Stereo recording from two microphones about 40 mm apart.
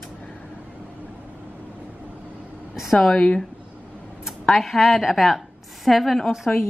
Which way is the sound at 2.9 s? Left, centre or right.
Left.